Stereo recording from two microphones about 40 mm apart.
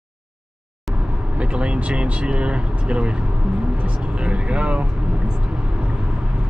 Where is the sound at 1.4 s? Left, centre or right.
Right.